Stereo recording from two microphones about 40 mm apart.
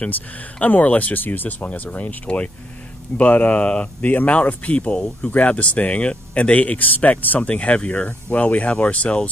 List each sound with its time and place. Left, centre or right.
0.6 s speech: left
1.1 s speech: left
1.7 s speech: left
7.3 s speech: left